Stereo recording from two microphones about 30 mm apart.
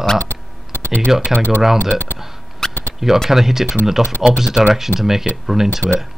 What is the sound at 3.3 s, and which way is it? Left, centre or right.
Speech, centre.